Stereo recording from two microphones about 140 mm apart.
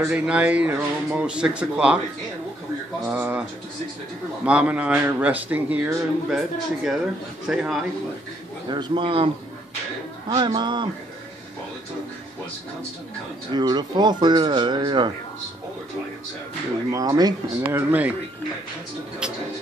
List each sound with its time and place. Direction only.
0.1 s a man's voice: 10° right (ahead or behind)
3.1 s a man's voice: 10° right (ahead or behind)
4.5 s a man's voice: 10° right (ahead or behind)
8.6 s speech: 30° right (ahead or behind)
13.5 s speech: 30° right (ahead or behind)
16.9 s speech: 25° right (ahead or behind)